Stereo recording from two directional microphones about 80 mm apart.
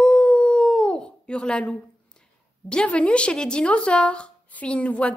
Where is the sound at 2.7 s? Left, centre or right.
Centre.